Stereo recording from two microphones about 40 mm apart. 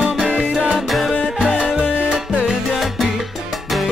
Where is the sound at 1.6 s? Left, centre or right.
Centre.